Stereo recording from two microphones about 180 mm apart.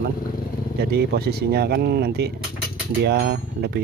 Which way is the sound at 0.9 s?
60° right (ahead or behind).